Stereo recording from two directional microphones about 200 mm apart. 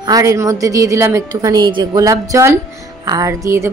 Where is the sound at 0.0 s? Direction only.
15° right (ahead or behind).